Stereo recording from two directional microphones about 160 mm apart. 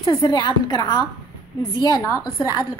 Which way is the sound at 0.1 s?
25° left (ahead or behind).